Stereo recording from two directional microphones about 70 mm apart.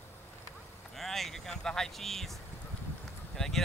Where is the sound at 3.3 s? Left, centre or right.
Centre.